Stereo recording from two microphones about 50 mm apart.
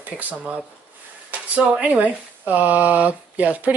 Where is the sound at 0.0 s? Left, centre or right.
Right.